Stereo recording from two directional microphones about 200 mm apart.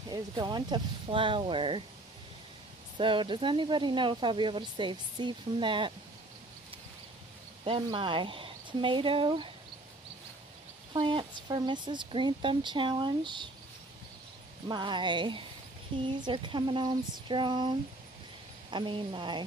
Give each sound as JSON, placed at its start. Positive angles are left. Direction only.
{"t": 0.1, "sound": "speech", "side_deg": -20}
{"t": 3.0, "sound": "speech", "side_deg": -25}
{"t": 7.6, "sound": "speech", "side_deg": -25}
{"t": 10.9, "sound": "speech", "side_deg": -25}
{"t": 14.7, "sound": "speech", "side_deg": -20}